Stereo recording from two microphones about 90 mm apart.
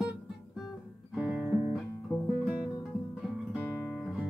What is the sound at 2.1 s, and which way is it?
Music, 20° left (ahead or behind).